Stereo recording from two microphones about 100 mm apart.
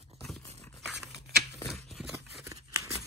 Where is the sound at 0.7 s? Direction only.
Centre (ahead or behind).